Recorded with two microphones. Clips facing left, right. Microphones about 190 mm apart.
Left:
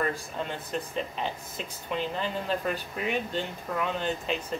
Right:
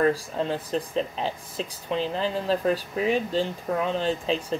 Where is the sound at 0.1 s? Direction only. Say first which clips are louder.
Right 7 dB; 35° right (ahead or behind).